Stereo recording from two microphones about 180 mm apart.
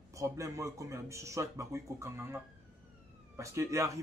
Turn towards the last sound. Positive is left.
turn(degrees=-15)  # may be behind; listen again after turning